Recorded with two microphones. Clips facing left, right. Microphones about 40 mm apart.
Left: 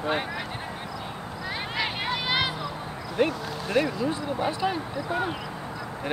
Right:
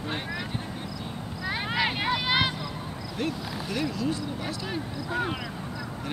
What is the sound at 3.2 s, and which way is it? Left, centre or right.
Speech, left.